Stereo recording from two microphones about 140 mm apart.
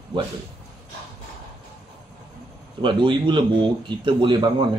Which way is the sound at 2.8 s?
35° right (ahead or behind).